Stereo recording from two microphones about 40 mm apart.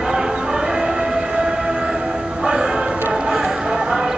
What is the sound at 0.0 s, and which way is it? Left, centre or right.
Train, centre.